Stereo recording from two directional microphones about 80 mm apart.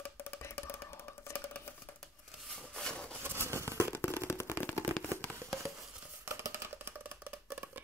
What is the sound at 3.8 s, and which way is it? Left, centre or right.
Fireworks, left.